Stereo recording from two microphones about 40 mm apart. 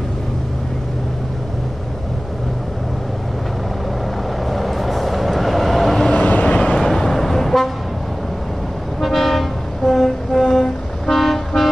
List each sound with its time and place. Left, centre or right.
4.5 s vehicle: centre
6.1 s vehicle: left
6.4 s vehicle: left
6.8 s toot: centre
9.0 s vehicle: centre